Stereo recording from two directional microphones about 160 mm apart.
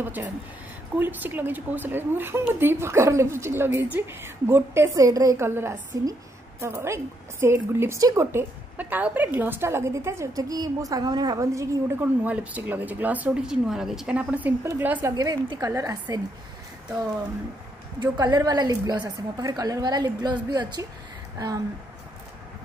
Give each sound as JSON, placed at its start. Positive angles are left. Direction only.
{"t": 0.0, "sound": "a woman's voice", "side_deg": -10}
{"t": 18.0, "sound": "a woman's voice", "side_deg": -25}